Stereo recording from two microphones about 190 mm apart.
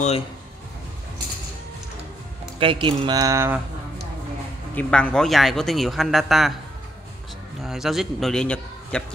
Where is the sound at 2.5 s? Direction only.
30° right (ahead or behind).